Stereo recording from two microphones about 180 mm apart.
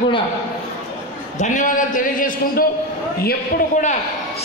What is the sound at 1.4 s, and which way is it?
A man's voice, 45° left (ahead or behind).